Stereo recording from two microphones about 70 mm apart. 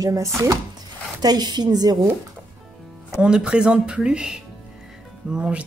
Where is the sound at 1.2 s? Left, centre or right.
Right.